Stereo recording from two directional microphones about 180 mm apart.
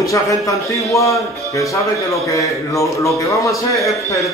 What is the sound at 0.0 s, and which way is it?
A man's voice, 20° left (ahead or behind).